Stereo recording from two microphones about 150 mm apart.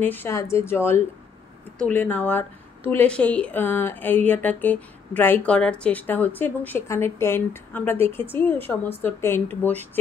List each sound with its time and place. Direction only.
0.0 s speech: 15° left (ahead or behind)